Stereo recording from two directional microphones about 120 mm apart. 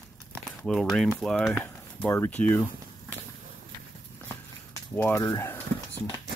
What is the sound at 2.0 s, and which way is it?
Speech, 20° left (ahead or behind).